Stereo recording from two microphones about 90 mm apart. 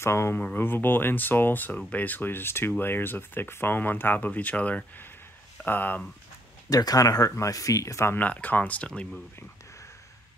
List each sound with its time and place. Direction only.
0.0 s speech: 30° left (ahead or behind)
0.4 s speech: 20° left (ahead or behind)
6.7 s speech: 45° left (ahead or behind)
8.2 s speech: 15° left (ahead or behind)